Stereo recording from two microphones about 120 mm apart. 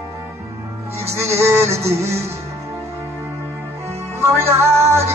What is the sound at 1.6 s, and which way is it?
Music, 60° right (ahead or behind).